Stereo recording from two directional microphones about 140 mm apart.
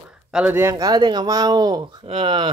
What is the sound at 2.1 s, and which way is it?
Speech, 40° right (ahead or behind).